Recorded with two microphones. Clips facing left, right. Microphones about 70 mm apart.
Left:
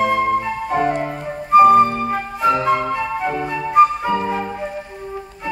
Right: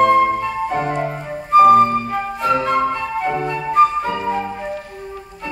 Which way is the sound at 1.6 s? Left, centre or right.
Centre.